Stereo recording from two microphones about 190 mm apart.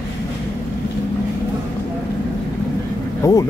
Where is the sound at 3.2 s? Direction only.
15° left (ahead or behind).